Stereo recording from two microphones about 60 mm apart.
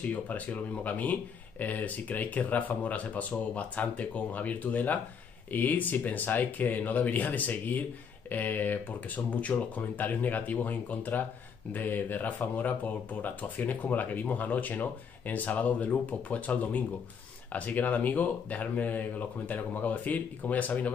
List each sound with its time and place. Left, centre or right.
0.0 s speech: left